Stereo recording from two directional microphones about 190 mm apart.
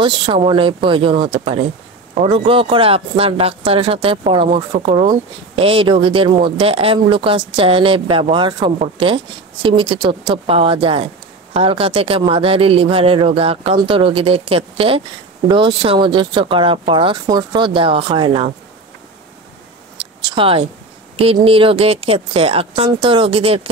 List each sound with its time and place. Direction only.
0.0 s speech: 25° right (ahead or behind)
20.0 s a sound: 25° right (ahead or behind)
21.2 s speech: 30° right (ahead or behind)